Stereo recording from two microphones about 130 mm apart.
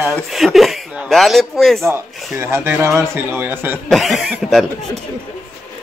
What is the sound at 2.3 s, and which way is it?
A man's voice, 20° right (ahead or behind).